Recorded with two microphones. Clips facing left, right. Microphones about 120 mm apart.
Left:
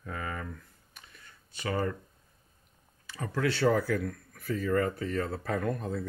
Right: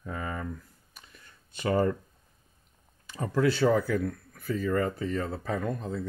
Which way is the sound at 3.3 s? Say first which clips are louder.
Right 3 dB; 20° right (ahead or behind).